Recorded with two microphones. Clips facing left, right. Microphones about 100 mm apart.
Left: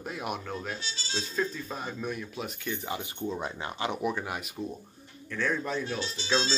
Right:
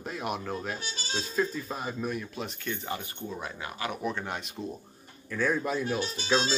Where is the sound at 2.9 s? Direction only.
20° left (ahead or behind).